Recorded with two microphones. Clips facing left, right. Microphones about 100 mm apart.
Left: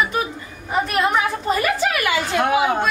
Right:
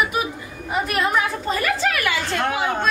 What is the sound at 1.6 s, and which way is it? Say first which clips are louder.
A woman's voice: left 1 dB; 15° left (ahead or behind).